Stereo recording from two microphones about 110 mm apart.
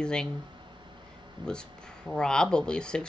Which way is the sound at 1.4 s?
50° right (ahead or behind).